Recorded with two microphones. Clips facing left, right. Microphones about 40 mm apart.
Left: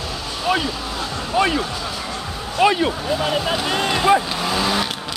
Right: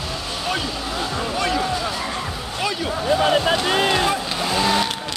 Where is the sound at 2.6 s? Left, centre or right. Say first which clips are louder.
Left 9 dB; left.